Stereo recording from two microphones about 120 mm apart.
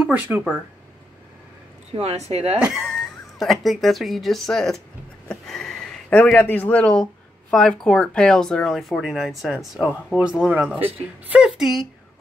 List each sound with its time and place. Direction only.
0.0 s speech: 10° right (ahead or behind)
1.9 s speech: 60° right (ahead or behind)
2.6 s speech: centre (ahead or behind)
5.3 s a sound: 5° left (ahead or behind)
6.3 s speech: 15° left (ahead or behind); by 10.9 s 15° right (ahead or behind)
11.3 s speech: 5° right (ahead or behind)